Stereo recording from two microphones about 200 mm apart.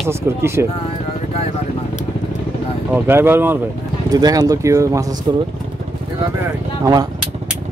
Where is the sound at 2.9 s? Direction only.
10° right (ahead or behind).